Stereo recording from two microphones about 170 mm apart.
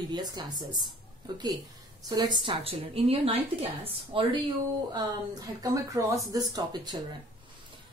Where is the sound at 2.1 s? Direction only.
25° right (ahead or behind).